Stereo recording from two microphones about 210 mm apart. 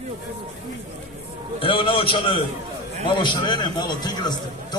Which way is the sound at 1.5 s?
25° left (ahead or behind).